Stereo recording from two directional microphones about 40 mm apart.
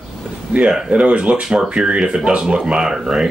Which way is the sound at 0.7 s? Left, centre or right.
Right.